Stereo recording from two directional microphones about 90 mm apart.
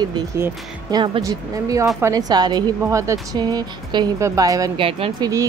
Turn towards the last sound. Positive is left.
turn(degrees=-45)  # may be behind; listen again after turning